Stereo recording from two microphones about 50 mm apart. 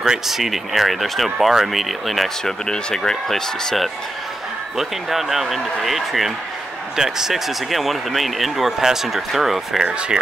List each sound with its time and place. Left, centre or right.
0.0 s speech: centre
9.8 s speech: right